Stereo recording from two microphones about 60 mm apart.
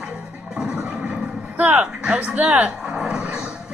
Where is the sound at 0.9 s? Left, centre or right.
Right.